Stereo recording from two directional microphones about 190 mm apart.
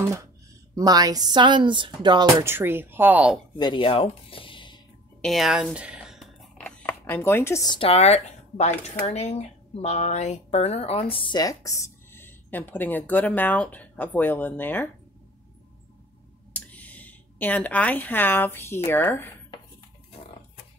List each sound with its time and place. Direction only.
0.0 s speech: 15° right (ahead or behind)
3.5 s speech: 25° left (ahead or behind)
5.2 s speech: centre (ahead or behind)
16.5 s speech: 10° left (ahead or behind)